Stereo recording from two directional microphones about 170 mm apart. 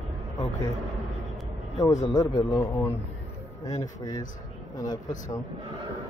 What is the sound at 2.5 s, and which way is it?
Speech, 10° left (ahead or behind).